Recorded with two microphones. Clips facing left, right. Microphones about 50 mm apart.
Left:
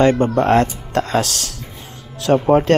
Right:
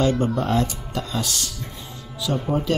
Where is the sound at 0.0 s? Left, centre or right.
Left.